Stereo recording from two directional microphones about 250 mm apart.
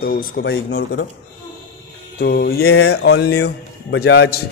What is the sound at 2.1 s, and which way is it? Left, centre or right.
A man's voice, left.